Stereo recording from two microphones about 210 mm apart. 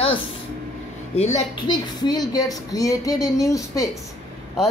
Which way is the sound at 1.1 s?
30° left (ahead or behind).